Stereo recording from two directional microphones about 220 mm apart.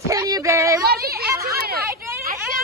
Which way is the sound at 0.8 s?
45° right (ahead or behind).